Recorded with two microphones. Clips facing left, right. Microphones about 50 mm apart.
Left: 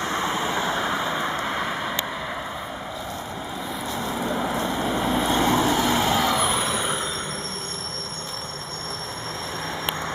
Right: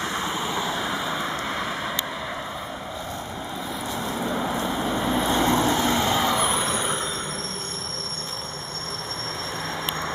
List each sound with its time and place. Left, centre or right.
0.1 s vehicle: left
1.0 s vehicle: centre
4.1 s vehicle: centre